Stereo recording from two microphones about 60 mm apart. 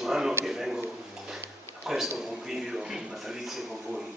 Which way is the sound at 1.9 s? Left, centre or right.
Centre.